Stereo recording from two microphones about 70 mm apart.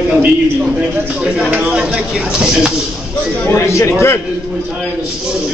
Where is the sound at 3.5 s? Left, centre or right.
Left.